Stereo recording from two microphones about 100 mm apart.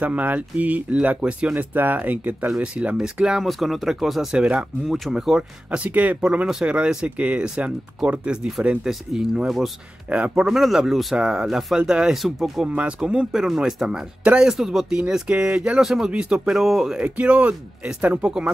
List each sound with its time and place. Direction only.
0.0 s speech: 15° right (ahead or behind)
5.9 s speech: 15° right (ahead or behind); by 12.6 s centre (ahead or behind)
12.6 s speech: 10° right (ahead or behind)